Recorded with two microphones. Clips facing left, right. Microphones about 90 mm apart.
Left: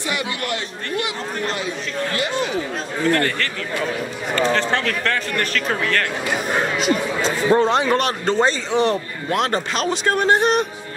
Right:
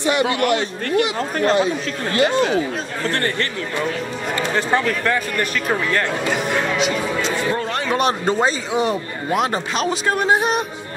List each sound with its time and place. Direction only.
0.0 s a man's voice: 30° right (ahead or behind)
1.4 s speech: 30° right (ahead or behind)
4.6 s speech: 10° right (ahead or behind)
6.8 s speech: 40° left (ahead or behind)
7.6 s a man's voice: 20° left (ahead or behind)
8.0 s a man's voice: 20° right (ahead or behind)